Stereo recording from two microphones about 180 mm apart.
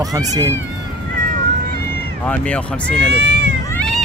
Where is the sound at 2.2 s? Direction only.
5° left (ahead or behind).